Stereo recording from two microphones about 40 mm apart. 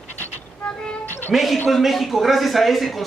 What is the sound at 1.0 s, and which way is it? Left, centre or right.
Cat, left.